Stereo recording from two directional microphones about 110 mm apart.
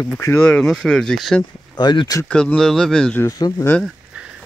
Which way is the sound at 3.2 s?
30° left (ahead or behind).